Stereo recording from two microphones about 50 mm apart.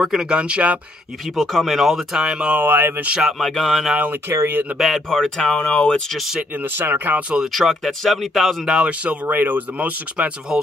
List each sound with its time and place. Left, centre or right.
0.0 s speech: centre
0.3 s speech: right
1.3 s speech: centre
2.5 s speech: right
3.2 s speech: centre
4.3 s speech: right
4.7 s speech: centre
5.1 s speech: centre
5.6 s speech: left
6.1 s speech: centre
6.6 s speech: right
7.5 s speech: centre
8.8 s speech: right
9.8 s speech: right